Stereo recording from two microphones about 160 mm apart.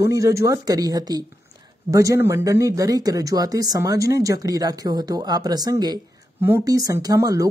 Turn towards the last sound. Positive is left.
turn(degrees=-20)  # may be behind; listen again after turning